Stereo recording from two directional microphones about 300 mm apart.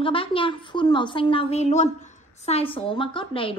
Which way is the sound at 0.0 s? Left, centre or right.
Centre.